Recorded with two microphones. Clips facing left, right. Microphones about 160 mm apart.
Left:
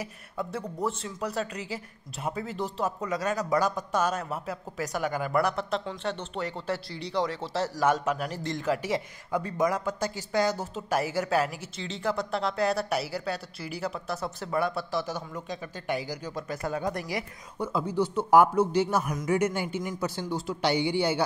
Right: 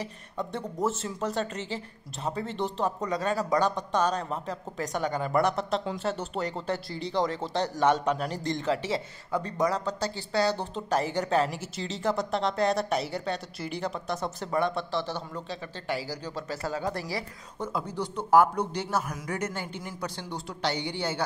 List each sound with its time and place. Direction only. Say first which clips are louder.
0.0 s speech: even; 5° left (ahead or behind)
8.7 s speech: left 1 dB; 15° left (ahead or behind)